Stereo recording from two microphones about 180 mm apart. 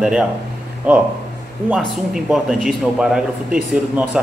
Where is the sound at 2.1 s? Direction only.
Centre (ahead or behind).